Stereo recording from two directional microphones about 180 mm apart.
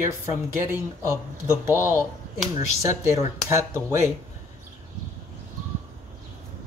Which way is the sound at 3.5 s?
15° right (ahead or behind).